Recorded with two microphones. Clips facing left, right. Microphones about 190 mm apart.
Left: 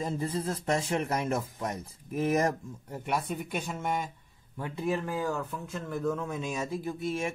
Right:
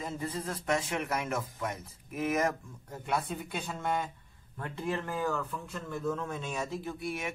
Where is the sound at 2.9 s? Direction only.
15° left (ahead or behind).